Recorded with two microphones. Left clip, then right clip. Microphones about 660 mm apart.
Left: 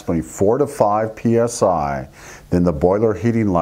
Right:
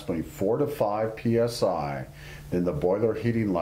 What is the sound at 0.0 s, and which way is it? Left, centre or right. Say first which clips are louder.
Speech: left 10 dB; left.